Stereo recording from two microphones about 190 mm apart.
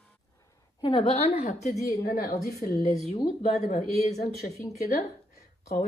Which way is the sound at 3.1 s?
35° left (ahead or behind).